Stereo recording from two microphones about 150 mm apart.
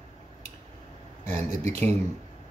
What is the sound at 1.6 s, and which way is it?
Speech, 15° left (ahead or behind).